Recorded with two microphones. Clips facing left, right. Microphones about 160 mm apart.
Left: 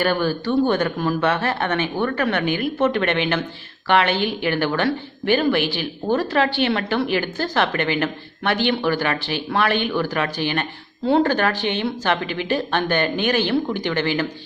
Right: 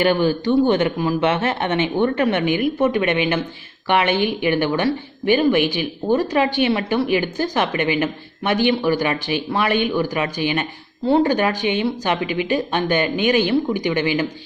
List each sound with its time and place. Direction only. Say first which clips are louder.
0.0 s a woman's voice: right 3 dB; 15° right (ahead or behind)